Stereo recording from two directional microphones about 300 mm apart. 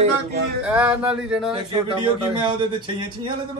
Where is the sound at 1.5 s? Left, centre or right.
Centre.